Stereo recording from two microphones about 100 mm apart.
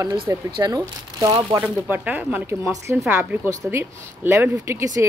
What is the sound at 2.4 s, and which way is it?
A woman's voice, 30° right (ahead or behind).